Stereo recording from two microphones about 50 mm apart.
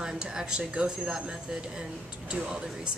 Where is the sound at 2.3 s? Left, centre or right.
Right.